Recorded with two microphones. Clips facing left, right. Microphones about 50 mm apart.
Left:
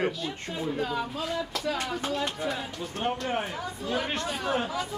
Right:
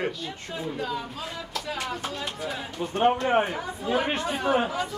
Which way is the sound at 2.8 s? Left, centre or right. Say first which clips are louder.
Right 13 dB; right.